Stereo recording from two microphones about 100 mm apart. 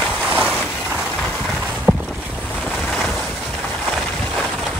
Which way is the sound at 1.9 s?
15° right (ahead or behind).